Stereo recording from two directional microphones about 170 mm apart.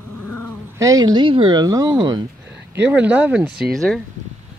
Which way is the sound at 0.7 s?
20° right (ahead or behind).